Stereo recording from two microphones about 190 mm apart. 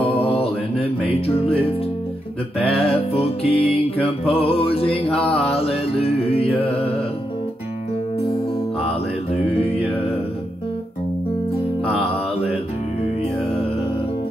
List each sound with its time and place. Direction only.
0.0 s music: 30° left (ahead or behind)
2.8 s music: 30° left (ahead or behind)
4.3 s mantra: 30° left (ahead or behind)